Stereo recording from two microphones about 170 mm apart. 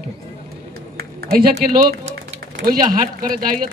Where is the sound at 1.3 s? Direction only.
65° right (ahead or behind).